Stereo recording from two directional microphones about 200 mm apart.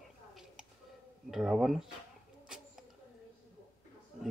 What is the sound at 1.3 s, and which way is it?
Speech, centre (ahead or behind).